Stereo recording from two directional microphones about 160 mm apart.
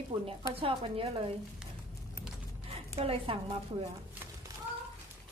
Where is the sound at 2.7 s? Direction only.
35° right (ahead or behind).